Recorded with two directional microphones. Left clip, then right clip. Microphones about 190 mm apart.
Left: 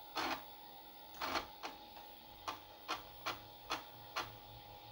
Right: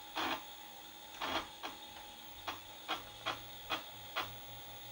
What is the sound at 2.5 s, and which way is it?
Printer, 30° left (ahead or behind).